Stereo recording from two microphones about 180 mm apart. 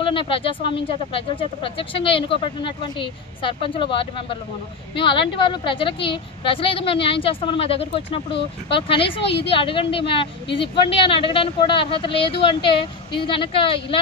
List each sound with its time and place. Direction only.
0.0 s speech: 30° left (ahead or behind)
9.2 s a woman's voice: 70° left (ahead or behind)
9.5 s speech: 30° left (ahead or behind)